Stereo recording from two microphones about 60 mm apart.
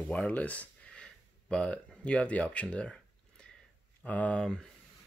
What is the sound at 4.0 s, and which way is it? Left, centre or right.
Speech, left.